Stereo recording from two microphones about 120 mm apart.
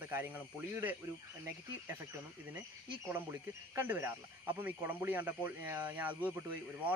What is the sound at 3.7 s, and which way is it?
Speech, 15° right (ahead or behind).